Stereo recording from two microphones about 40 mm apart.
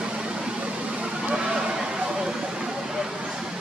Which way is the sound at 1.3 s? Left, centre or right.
Right.